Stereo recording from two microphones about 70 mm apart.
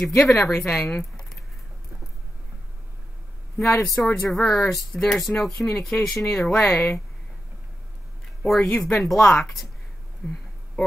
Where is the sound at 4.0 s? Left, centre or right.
Left.